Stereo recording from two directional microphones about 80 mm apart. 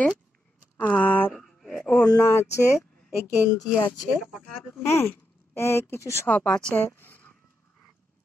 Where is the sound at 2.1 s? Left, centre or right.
Left.